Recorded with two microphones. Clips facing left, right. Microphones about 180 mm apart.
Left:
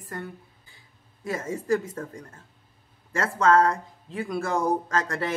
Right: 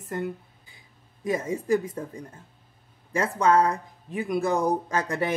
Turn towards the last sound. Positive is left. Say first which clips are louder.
# right 1 dB
turn(degrees=-15)  # may be behind; listen again after turning